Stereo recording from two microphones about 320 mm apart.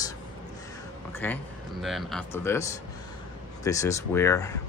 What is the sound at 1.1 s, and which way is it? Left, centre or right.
A man's voice, centre.